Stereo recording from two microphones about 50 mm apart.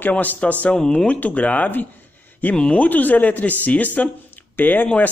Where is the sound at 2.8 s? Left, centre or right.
Left.